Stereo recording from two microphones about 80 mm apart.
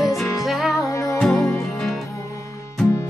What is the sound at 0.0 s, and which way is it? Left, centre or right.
Music, centre.